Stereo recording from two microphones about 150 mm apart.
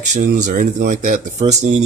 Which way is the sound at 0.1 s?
60° right (ahead or behind).